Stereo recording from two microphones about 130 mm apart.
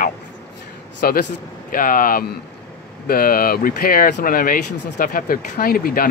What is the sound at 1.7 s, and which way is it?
Speech, 90° left.